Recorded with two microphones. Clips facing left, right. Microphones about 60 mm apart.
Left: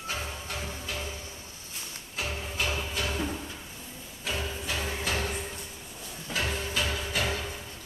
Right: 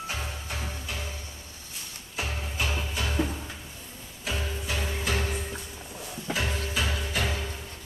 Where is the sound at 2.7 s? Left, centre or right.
Centre.